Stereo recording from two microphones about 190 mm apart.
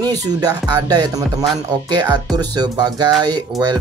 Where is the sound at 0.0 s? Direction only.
20° right (ahead or behind).